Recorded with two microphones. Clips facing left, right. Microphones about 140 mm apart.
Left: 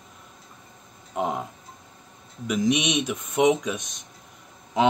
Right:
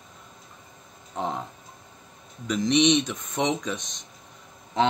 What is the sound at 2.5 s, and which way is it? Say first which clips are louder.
Speech: right 2 dB; 10° left (ahead or behind).